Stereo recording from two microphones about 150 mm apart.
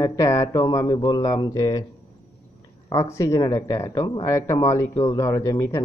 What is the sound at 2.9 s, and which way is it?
Speech, 20° left (ahead or behind).